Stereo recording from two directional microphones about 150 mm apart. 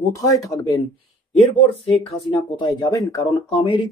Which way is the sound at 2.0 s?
30° left (ahead or behind).